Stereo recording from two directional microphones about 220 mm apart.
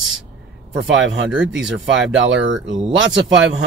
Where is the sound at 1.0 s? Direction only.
60° right (ahead or behind).